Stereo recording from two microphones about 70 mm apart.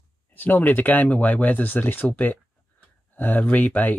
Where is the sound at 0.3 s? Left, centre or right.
Left.